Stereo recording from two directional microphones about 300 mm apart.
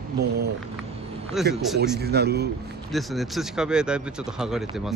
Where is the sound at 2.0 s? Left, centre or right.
Right.